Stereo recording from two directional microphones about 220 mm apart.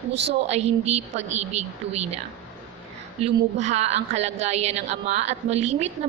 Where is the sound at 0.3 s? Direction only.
30° right (ahead or behind).